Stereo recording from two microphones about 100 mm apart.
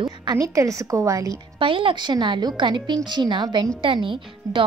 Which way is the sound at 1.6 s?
60° right (ahead or behind).